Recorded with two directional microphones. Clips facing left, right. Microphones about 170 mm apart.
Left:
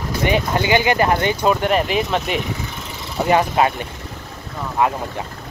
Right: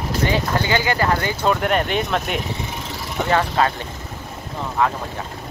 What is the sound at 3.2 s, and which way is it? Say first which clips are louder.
Speech: left 3 dB; 15° left (ahead or behind).